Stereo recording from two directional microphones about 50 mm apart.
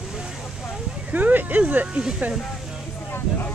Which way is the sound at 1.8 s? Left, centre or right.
Right.